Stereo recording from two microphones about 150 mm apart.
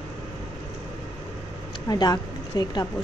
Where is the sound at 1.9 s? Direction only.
25° left (ahead or behind).